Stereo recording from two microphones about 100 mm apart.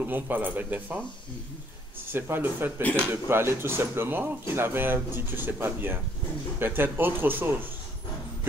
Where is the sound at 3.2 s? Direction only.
25° right (ahead or behind).